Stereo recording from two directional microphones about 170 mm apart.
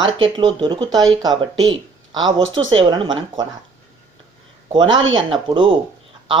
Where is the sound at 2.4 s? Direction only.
90° right.